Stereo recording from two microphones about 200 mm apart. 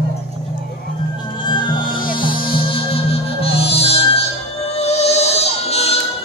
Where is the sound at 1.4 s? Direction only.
25° left (ahead or behind).